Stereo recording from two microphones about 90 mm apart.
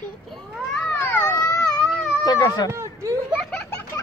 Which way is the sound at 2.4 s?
45° left (ahead or behind).